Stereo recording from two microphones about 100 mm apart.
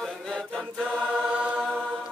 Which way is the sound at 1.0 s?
10° right (ahead or behind).